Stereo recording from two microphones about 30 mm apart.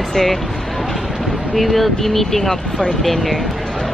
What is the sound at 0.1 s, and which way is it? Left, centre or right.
Speech, centre.